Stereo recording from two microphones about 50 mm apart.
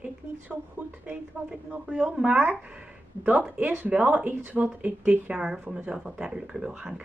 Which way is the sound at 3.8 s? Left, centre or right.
Right.